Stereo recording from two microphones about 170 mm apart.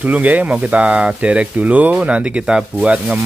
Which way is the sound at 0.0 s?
10° right (ahead or behind).